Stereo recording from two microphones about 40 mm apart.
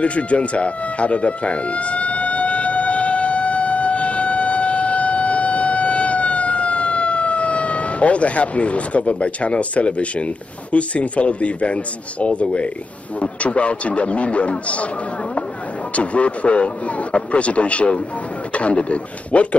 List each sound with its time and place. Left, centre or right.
0.0 s a sound: left
13.2 s speech: left
15.9 s speech: left